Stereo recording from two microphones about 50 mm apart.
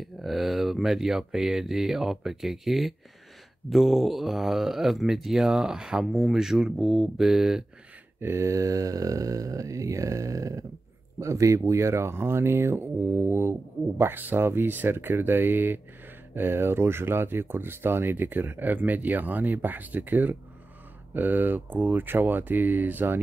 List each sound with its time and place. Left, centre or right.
0.0 s speech: centre
8.2 s mantra: right
11.1 s speech: right